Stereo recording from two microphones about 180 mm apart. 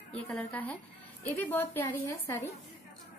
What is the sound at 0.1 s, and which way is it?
A woman's voice, 5° left (ahead or behind).